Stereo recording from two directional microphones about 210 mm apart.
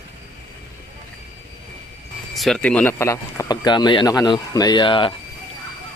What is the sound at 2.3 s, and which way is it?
Speech, centre (ahead or behind).